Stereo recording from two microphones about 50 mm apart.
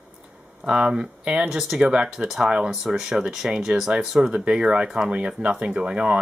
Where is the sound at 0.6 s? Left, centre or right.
Centre.